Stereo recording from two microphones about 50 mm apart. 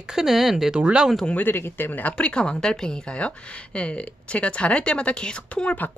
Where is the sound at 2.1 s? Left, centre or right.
Left.